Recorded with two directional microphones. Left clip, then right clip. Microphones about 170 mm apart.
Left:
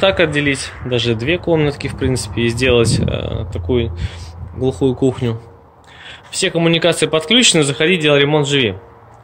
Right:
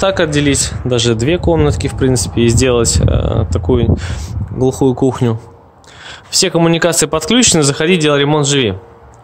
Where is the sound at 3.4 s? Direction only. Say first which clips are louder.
Right 2 dB; 45° right (ahead or behind).